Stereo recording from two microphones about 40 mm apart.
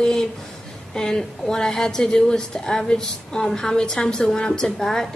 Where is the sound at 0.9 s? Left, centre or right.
Centre.